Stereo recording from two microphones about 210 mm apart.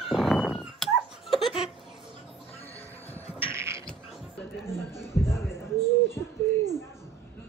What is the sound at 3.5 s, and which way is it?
Beatboxing, 10° right (ahead or behind).